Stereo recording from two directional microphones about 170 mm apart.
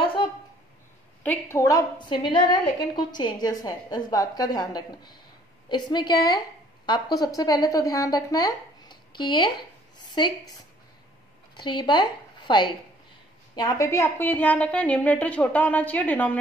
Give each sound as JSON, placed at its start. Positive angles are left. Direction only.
{"t": 0.0, "sound": "a sound", "side_deg": 30}
{"t": 1.2, "sound": "a woman's voice", "side_deg": 15}
{"t": 11.5, "sound": "a woman's voice", "side_deg": 25}